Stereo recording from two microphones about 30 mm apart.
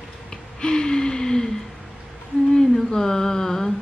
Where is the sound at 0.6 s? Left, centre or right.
Left.